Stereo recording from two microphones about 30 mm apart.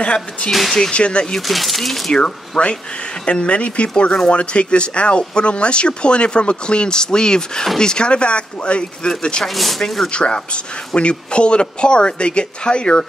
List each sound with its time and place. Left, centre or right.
0.0 s speech: left
0.5 s speech: centre
0.9 s speech: left
1.5 s speech: centre
2.2 s speech: left
9.4 s speech: centre
10.0 s speech: left